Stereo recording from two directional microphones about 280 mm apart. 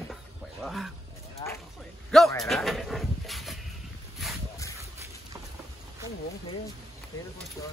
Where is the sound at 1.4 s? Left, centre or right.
Centre.